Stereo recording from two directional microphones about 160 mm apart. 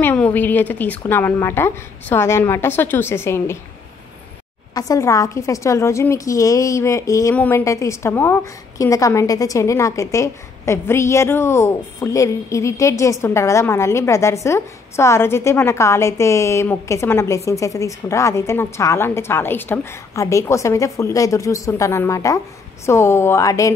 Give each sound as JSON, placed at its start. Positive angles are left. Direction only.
{"t": 0.0, "sound": "a woman's voice", "side_deg": 10}
{"t": 4.7, "sound": "a woman's voice", "side_deg": 20}